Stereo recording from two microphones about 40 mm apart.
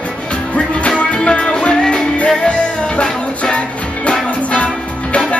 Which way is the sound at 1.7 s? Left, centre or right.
Centre.